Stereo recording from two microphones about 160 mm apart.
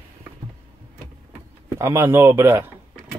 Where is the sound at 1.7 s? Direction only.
15° right (ahead or behind).